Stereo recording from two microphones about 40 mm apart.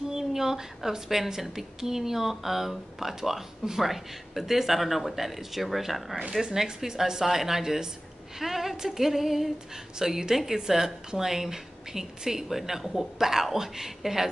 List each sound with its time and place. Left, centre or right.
0.1 s a woman's voice: centre
9.9 s a woman's voice: centre